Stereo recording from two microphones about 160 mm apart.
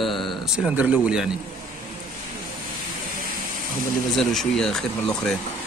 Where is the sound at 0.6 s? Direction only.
10° right (ahead or behind).